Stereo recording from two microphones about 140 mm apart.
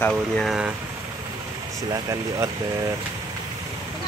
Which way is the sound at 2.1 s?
20° right (ahead or behind).